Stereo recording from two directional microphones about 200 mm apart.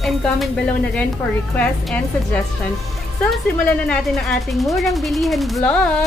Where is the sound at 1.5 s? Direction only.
5° left (ahead or behind).